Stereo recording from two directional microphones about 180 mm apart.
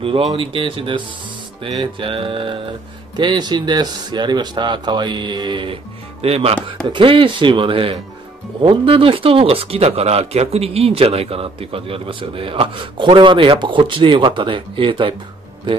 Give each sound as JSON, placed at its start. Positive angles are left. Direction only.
{"t": 0.0, "sound": "speech", "side_deg": -30}